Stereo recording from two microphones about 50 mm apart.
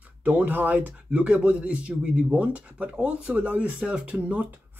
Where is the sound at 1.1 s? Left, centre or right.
Right.